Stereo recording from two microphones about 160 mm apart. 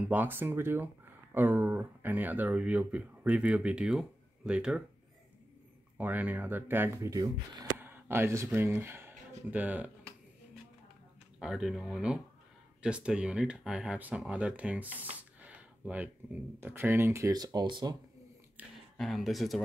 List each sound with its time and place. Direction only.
0.1 s speech: 10° right (ahead or behind)
5.9 s speech: 10° right (ahead or behind)
11.3 s speech: 5° right (ahead or behind); by 17.9 s 25° right (ahead or behind)
18.6 s a sound: 10° right (ahead or behind)
18.9 s speech: centre (ahead or behind)